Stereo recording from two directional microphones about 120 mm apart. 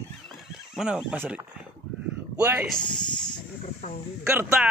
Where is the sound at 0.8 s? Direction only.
10° right (ahead or behind).